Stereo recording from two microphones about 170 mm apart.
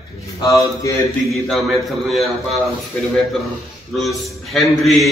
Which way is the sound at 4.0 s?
Centre (ahead or behind).